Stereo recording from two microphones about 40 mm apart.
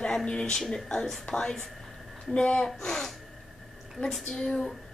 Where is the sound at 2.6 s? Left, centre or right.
Centre.